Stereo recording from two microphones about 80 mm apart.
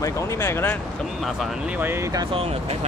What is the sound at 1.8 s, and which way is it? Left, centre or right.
Speech, right.